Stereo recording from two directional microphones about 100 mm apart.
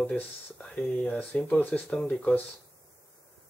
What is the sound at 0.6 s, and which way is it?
Speech, 5° left (ahead or behind).